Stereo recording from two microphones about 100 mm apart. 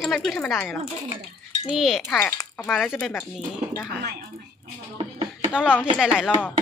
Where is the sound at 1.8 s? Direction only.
5° right (ahead or behind).